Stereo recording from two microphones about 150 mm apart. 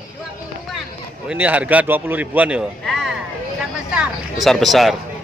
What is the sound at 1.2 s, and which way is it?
A man's voice, 10° right (ahead or behind).